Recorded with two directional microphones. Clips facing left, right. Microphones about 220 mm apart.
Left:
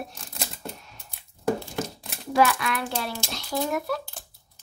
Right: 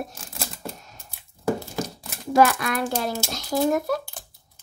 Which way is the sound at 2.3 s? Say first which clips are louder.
Right 3 dB; 45° right (ahead or behind).